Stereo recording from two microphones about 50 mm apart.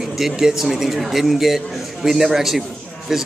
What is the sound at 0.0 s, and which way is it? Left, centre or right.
A man's voice, centre.